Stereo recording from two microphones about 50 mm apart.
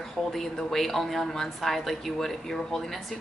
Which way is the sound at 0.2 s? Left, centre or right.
Centre.